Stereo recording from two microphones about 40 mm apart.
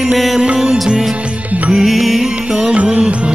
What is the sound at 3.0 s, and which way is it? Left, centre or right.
Music, right.